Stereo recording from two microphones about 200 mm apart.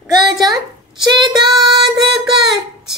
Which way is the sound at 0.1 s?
20° right (ahead or behind).